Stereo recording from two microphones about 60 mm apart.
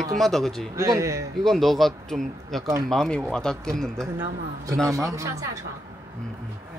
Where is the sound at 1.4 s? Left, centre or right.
Centre.